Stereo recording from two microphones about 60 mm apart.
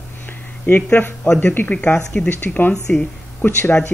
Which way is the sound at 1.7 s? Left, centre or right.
Left.